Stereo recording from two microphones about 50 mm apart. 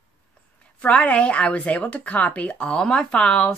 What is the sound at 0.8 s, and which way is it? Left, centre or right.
Speech, left.